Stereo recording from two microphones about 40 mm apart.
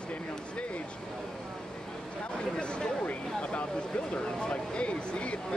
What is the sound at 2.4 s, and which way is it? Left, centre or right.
Speech, left.